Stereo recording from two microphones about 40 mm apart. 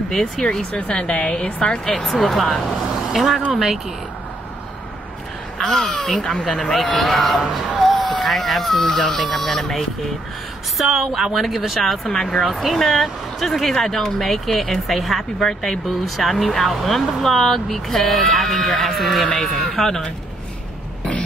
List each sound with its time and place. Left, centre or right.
0.1 s speech: centre
0.7 s a woman's voice: left
1.9 s speech: centre
5.6 s speech: centre
7.8 s vehicle: centre
8.1 s speech: centre
10.8 s speech: centre
11.1 s speech: centre
11.3 s speech: centre